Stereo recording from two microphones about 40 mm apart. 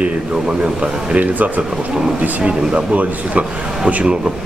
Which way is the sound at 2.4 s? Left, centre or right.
Right.